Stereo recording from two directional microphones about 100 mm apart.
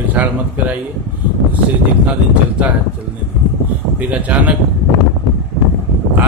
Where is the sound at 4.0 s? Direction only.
15° right (ahead or behind).